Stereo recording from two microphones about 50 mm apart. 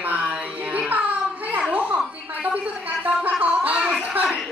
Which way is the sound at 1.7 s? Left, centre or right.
Right.